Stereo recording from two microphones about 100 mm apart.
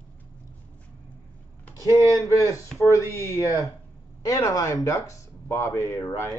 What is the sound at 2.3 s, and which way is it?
Speech, 30° left (ahead or behind).